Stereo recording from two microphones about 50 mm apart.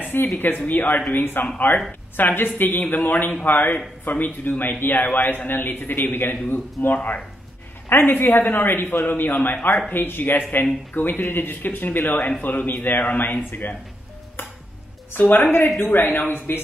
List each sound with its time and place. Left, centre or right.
0.0 s a sound: left
0.4 s a man's voice: left
15.1 s a man's voice: left